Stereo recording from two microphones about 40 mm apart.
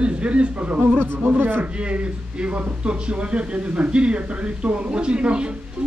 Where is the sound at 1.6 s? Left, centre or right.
Right.